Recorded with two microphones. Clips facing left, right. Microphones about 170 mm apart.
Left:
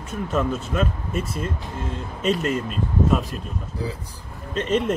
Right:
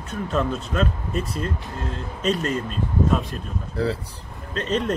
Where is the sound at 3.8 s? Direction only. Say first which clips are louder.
Right 7 dB; 70° right (ahead or behind).